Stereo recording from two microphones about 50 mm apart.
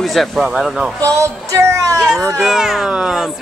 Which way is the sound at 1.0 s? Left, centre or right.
Right.